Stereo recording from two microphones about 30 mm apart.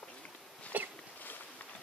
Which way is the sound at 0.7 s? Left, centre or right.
Right.